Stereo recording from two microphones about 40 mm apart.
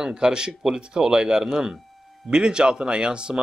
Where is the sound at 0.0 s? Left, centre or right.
Centre.